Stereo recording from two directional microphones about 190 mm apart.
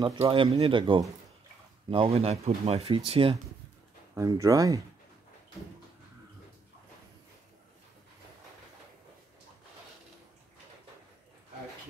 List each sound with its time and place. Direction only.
0.0 s speech: 20° right (ahead or behind)
4.1 s speech: 15° right (ahead or behind)